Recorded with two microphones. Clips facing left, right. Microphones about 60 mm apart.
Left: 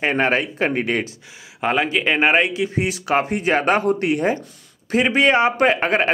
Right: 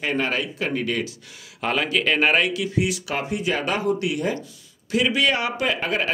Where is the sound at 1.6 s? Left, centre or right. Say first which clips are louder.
Left 3 dB; left.